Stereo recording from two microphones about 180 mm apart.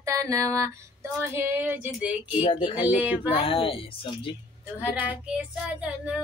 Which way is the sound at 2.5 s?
25° left (ahead or behind).